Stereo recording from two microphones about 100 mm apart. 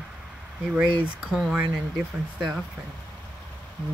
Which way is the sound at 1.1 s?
5° right (ahead or behind).